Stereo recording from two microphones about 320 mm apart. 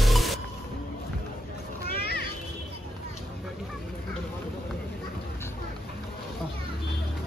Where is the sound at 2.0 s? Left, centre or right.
Left.